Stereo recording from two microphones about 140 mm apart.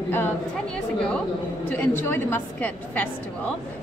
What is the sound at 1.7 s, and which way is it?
A woman's voice, 15° left (ahead or behind).